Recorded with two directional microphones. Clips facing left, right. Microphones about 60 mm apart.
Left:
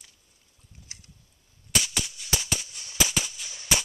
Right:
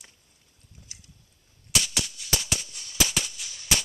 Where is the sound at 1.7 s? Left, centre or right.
Centre.